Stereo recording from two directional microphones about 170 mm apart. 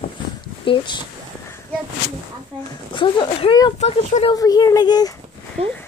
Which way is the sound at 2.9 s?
30° left (ahead or behind).